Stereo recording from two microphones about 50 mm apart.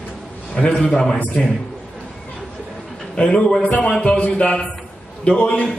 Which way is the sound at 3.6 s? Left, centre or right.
Left.